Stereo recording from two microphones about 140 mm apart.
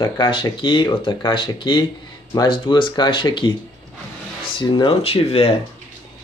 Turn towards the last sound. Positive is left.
turn(degrees=45)  # may be behind; listen again after turning